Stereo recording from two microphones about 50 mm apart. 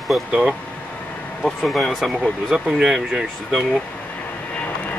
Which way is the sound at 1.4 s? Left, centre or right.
Centre.